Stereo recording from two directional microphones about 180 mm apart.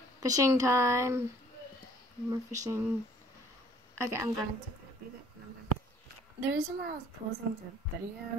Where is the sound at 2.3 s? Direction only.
20° right (ahead or behind).